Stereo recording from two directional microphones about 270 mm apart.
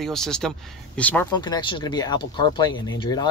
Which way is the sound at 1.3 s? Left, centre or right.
Centre.